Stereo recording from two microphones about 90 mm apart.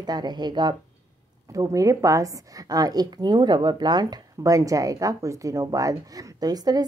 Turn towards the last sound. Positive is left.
turn(degrees=-45)  # may be behind; listen again after turning